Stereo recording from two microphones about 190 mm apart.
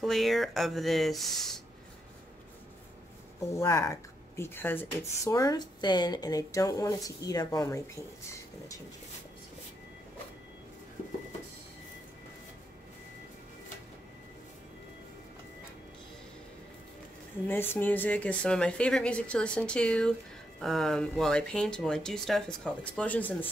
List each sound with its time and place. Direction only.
0.0 s speech: centre (ahead or behind)
3.5 s speech: 15° left (ahead or behind)
17.5 s speech: 10° left (ahead or behind)